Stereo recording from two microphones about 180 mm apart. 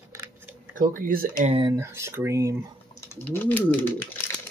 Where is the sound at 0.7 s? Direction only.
50° right (ahead or behind).